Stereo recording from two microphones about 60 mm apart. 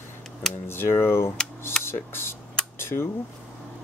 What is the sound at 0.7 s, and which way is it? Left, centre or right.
Speech, left.